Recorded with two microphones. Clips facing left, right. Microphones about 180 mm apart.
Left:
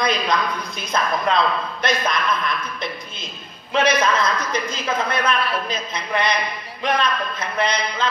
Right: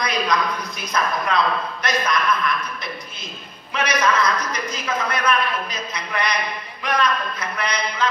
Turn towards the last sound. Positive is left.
turn(degrees=25)  # may be behind; listen again after turning